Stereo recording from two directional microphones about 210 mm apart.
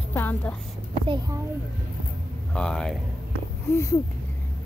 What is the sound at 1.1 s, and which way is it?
Speech, 20° right (ahead or behind).